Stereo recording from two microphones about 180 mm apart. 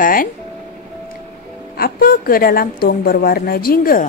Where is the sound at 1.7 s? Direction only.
55° left (ahead or behind).